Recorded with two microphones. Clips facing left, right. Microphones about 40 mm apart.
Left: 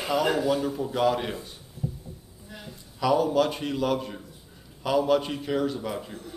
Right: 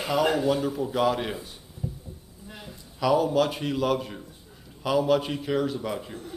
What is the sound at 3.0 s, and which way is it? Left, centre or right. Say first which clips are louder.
Speech: even; centre.